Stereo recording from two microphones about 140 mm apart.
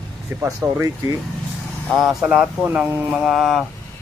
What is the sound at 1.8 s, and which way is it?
A man's voice, centre (ahead or behind).